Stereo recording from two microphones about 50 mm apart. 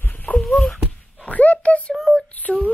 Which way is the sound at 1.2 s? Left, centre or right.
Left.